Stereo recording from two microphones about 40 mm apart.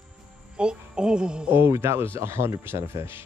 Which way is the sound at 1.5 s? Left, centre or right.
Right.